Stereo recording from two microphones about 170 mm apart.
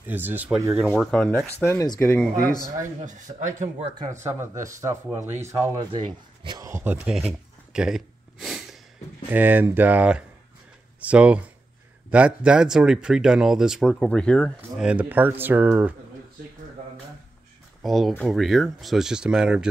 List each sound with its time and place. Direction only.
0.0 s speech: 10° right (ahead or behind)
0.7 s speech: centre (ahead or behind)
3.1 s speech: 45° right (ahead or behind)
3.9 s speech: 20° right (ahead or behind)
5.9 s a sound: 30° right (ahead or behind); by 8.7 s centre (ahead or behind)
9.3 s speech: 10° right (ahead or behind); by 14.9 s 5° left (ahead or behind)
14.9 s speech: 10° right (ahead or behind)
17.8 s speech: centre (ahead or behind)